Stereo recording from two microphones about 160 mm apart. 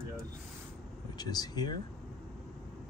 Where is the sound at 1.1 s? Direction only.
25° left (ahead or behind).